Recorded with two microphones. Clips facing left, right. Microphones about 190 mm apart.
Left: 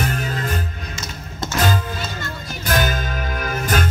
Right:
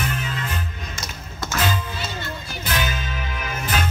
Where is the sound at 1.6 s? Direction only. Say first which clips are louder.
Left 4 dB; 45° left (ahead or behind).